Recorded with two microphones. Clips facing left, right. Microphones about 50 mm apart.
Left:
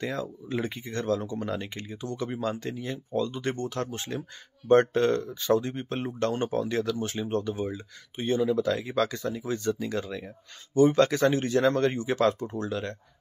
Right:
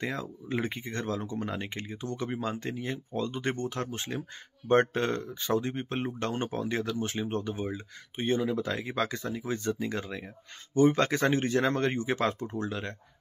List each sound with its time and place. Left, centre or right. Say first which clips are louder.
0.0 s speech: left 2 dB; right
10.7 s speech: left 3 dB; right